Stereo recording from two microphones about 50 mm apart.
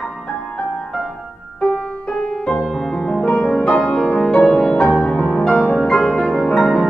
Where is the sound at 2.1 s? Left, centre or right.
Centre.